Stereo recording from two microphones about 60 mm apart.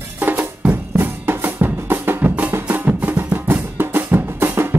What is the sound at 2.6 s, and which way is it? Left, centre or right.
Music, right.